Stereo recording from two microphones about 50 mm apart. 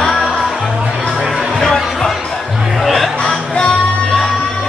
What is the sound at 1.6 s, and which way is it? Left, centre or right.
Music, centre.